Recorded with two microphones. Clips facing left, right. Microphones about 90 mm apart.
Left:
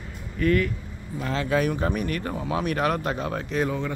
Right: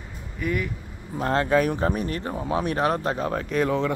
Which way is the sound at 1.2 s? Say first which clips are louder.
Right 3 dB; 45° right (ahead or behind).